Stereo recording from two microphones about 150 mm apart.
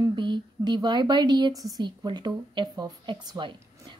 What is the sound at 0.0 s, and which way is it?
A woman's voice, 30° right (ahead or behind).